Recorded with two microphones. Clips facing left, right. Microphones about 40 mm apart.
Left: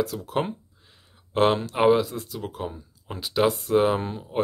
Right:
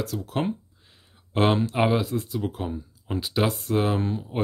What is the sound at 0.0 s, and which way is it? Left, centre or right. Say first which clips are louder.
Speech: left 2 dB; centre.